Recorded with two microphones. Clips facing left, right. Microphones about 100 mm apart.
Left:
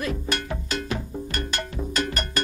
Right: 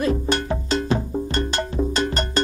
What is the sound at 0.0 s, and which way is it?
Music, 30° right (ahead or behind).